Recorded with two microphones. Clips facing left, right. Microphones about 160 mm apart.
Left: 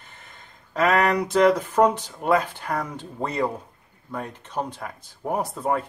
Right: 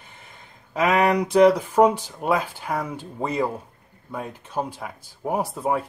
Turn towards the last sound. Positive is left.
turn(degrees=-10)  # may be behind; listen again after turning